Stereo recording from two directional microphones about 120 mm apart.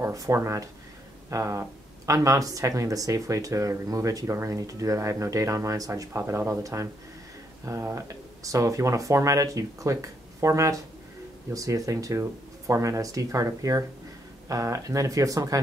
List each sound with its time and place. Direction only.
0.0 s speech: 25° right (ahead or behind)